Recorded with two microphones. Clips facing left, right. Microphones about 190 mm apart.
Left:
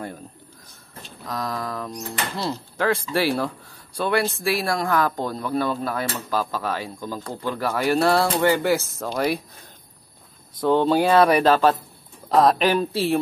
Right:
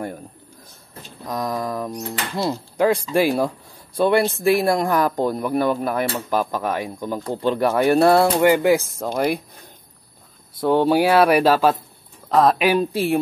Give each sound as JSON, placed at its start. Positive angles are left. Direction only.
{"t": 1.2, "sound": "speech", "side_deg": -20}
{"t": 8.1, "sound": "speech", "side_deg": -10}
{"t": 12.6, "sound": "speech", "side_deg": -15}